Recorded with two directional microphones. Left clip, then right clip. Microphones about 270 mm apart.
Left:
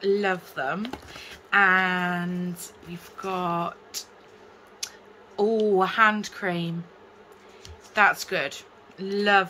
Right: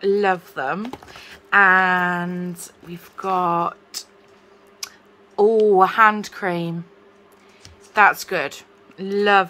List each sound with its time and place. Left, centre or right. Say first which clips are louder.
0.0 s speech: right 6 dB; centre
7.9 s speech: right 5 dB; centre